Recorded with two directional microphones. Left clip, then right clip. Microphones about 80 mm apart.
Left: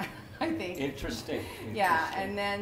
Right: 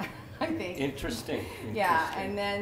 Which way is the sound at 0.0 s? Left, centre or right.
Left.